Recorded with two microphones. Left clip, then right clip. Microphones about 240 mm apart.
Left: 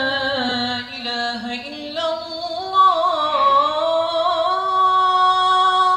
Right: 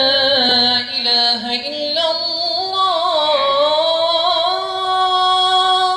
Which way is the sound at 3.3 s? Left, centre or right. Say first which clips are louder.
Even; left.